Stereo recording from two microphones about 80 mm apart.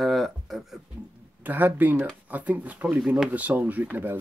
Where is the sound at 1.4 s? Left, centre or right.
Right.